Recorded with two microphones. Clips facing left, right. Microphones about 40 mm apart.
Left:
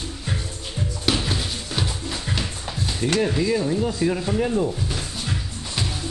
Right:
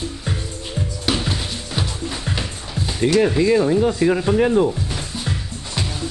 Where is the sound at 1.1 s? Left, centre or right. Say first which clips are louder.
Right 1 dB; centre.